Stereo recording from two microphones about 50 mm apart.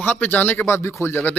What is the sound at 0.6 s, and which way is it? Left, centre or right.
Speech, left.